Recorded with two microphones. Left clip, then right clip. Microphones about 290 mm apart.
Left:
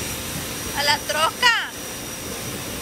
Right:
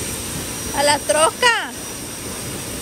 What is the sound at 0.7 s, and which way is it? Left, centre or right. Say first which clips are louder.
Speech: right 5 dB; centre.